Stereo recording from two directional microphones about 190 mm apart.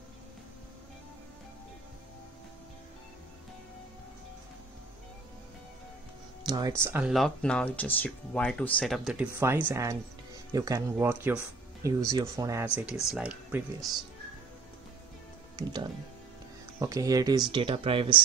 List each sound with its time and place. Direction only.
6.4 s speech: 20° right (ahead or behind)
6.8 s speech: 10° right (ahead or behind)
15.5 s speech: 25° right (ahead or behind)